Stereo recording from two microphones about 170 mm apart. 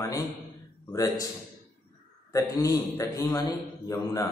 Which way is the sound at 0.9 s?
20° left (ahead or behind).